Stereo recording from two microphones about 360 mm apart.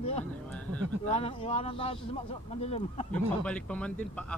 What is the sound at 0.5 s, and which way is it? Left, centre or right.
Speech, centre.